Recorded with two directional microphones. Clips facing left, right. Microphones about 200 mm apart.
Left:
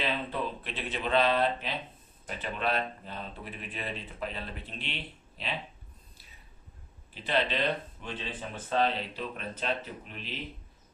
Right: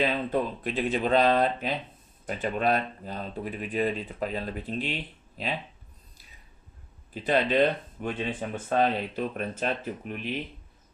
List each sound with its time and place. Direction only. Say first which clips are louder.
0.0 s speech: right 6 dB; 45° right (ahead or behind)
7.2 s speech: right 6 dB; 50° right (ahead or behind)